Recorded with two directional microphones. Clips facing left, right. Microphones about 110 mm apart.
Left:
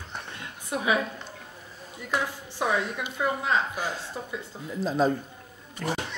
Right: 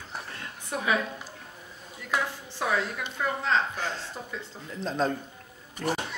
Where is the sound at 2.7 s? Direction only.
15° left (ahead or behind).